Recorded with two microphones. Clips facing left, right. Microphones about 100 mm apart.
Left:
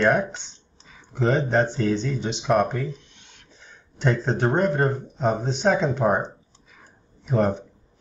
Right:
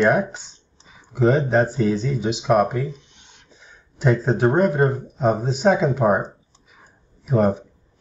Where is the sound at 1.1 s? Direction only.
5° right (ahead or behind).